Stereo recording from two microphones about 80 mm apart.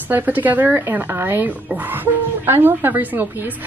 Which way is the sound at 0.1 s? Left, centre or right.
Right.